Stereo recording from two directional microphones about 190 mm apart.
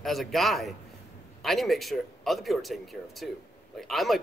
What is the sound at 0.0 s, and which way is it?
Speech, centre (ahead or behind).